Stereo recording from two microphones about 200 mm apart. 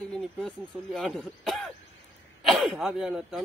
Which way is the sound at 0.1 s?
Centre (ahead or behind).